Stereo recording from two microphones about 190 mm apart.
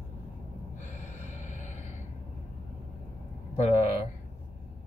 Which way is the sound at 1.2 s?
40° left (ahead or behind).